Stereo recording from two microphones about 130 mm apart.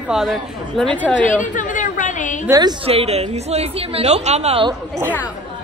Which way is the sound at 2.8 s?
50° right (ahead or behind).